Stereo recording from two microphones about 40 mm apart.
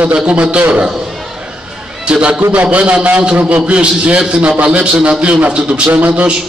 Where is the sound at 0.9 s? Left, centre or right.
Centre.